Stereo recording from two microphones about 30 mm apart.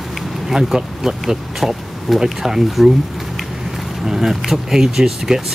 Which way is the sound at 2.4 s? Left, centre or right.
Centre.